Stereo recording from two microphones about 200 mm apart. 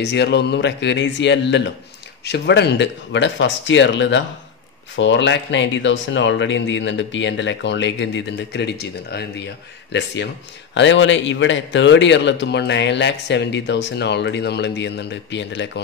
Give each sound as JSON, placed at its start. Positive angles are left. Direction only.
{"t": 0.0, "sound": "a man's voice", "side_deg": 55}